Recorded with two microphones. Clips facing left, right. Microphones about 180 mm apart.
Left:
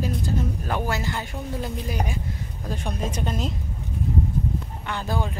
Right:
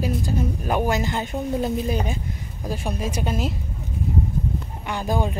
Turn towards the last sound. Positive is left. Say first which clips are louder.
# right 4 dB
turn(degrees=-15)  # may be behind; listen again after turning